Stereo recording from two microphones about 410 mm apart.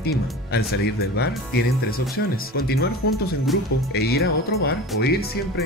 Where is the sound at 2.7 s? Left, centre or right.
Left.